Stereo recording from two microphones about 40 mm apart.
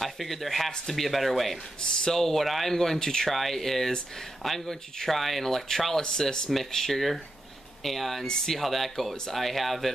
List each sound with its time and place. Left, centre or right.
0.0 s speech: centre
1.8 s speech: left
2.1 s speech: centre